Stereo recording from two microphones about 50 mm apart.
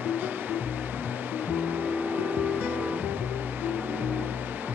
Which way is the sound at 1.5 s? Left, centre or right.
Right.